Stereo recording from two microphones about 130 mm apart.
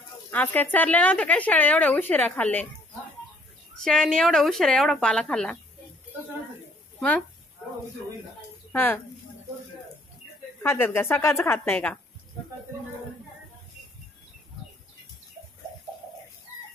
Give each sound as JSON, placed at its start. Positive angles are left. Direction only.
{"t": 0.3, "sound": "a woman's voice", "side_deg": 15}
{"t": 3.7, "sound": "speech", "side_deg": 5}
{"t": 7.0, "sound": "speech", "side_deg": 5}
{"t": 8.7, "sound": "a woman's voice", "side_deg": 15}
{"t": 10.6, "sound": "a woman's voice", "side_deg": 15}